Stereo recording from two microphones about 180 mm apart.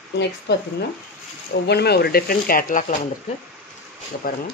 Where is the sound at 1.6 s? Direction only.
65° left (ahead or behind); by 2.9 s 45° left (ahead or behind).